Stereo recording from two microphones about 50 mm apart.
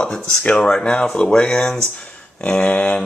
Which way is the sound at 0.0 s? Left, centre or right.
Centre.